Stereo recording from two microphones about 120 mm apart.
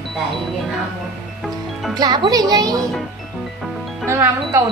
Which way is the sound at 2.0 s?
35° right (ahead or behind).